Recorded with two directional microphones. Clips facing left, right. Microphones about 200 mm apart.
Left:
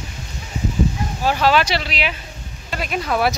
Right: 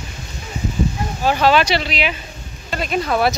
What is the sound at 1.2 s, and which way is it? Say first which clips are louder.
Speech: right 2 dB; 5° left (ahead or behind).